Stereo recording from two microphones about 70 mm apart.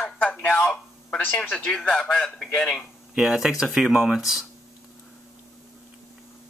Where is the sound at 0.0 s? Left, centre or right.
Centre.